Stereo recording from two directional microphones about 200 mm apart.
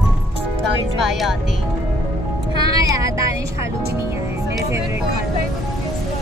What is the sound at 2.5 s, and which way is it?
Music, 20° right (ahead or behind).